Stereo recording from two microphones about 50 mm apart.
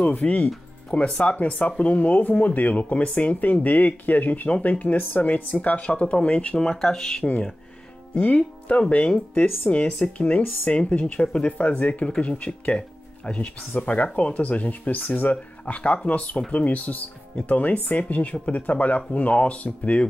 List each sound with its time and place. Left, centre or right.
0.0 s speech: left
0.8 s speech: left
6.6 s speech: centre
7.2 s speech: left
9.3 s speech: left
9.7 s speech: left
15.6 s speech: left
16.6 s speech: left